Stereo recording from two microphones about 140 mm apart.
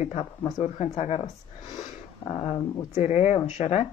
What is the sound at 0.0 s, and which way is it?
Speech, 45° left (ahead or behind).